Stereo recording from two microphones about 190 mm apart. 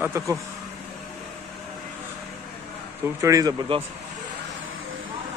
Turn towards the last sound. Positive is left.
turn(degrees=-25)  # may be behind; listen again after turning